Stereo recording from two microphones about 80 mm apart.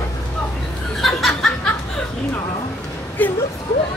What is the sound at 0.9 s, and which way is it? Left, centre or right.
Chuckle, centre.